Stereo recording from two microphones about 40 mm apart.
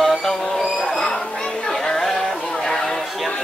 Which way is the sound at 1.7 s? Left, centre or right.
Centre.